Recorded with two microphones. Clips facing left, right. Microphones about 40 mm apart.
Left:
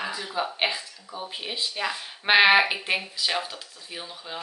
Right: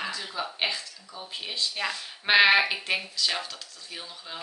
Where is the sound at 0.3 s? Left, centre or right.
Centre.